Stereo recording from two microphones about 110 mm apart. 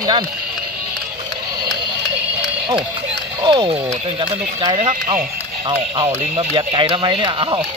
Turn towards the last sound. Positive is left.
turn(degrees=-45)  # may be behind; listen again after turning